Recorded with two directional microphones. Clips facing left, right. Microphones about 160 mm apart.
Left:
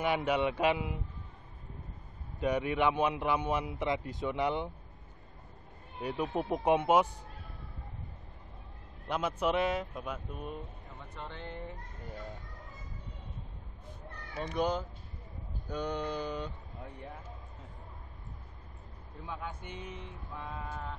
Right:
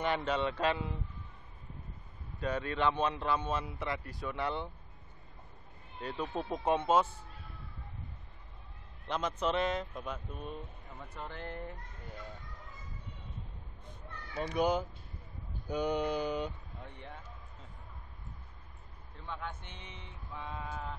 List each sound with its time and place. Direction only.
0.0 s a man's voice: 10° left (ahead or behind)
2.4 s a man's voice: 15° left (ahead or behind)
5.9 s a man's voice: 10° left (ahead or behind)
9.0 s a man's voice: 10° left (ahead or behind)
11.0 s a sound: 5° right (ahead or behind)
14.5 s mantra: 10° right (ahead or behind)
16.8 s a man's voice: 5° left (ahead or behind)
19.2 s a sound: 10° left (ahead or behind)